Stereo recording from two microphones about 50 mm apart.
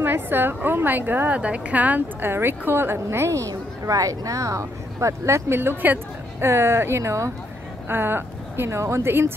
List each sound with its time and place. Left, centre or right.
0.0 s a woman's voice: right
1.3 s speech: right
2.2 s a woman's voice: right
5.5 s speech: right
6.4 s speech: right
7.0 s speech: right
7.9 s speech: right